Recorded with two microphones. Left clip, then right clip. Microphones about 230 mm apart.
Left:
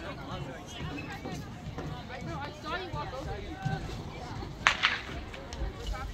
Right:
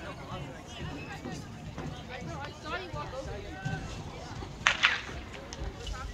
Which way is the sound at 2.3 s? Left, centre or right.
Left.